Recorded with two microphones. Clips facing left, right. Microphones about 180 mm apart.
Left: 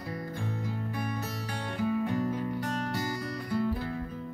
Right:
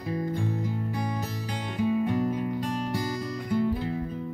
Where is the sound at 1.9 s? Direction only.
20° right (ahead or behind).